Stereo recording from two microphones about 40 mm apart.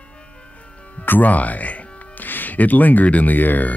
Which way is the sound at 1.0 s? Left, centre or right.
Left.